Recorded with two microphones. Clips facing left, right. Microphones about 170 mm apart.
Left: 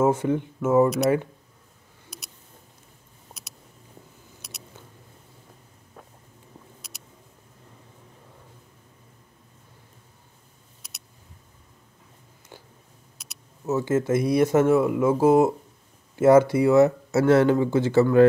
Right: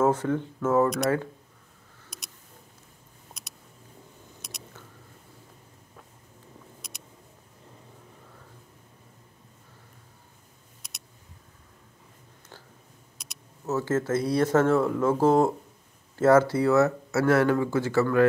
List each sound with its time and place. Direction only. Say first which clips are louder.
0.0 s speech: left 2 dB; 10° left (ahead or behind)
13.2 s speech: left 3 dB; 5° left (ahead or behind)